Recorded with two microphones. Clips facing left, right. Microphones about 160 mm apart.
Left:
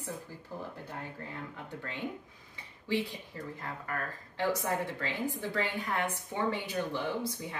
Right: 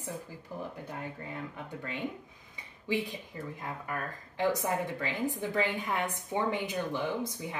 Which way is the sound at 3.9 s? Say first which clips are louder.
Right 1 dB; 15° right (ahead or behind).